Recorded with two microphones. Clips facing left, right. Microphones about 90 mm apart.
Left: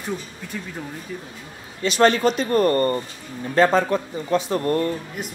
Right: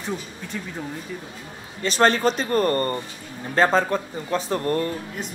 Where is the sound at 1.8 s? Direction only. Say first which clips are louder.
Left 2 dB; 40° right (ahead or behind).